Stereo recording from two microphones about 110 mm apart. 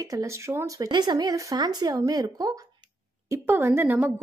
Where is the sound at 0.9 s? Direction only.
40° right (ahead or behind).